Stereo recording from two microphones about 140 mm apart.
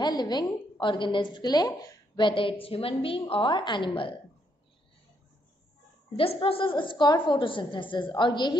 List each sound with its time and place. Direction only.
0.0 s a woman's voice: 30° left (ahead or behind)
6.1 s a woman's voice: 40° left (ahead or behind)